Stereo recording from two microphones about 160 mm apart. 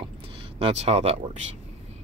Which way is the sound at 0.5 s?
40° right (ahead or behind).